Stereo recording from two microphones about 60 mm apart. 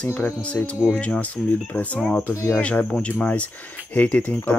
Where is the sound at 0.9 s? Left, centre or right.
Centre.